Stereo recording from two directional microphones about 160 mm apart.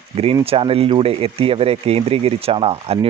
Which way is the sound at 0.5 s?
35° right (ahead or behind).